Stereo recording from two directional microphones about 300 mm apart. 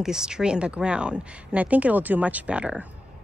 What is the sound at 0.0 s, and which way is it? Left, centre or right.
Speech, centre.